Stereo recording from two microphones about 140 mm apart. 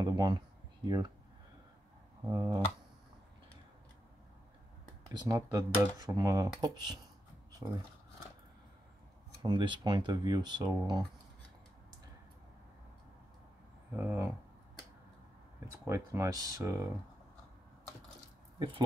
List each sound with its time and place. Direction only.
0.0 s speech: 30° right (ahead or behind)
2.2 s speech: 20° right (ahead or behind)
5.1 s speech: 25° right (ahead or behind)
9.4 s speech: 30° right (ahead or behind)
13.9 s speech: 15° right (ahead or behind)
15.9 s speech: 20° right (ahead or behind)